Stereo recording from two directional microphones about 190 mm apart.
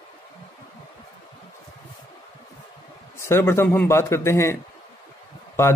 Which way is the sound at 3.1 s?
15° left (ahead or behind).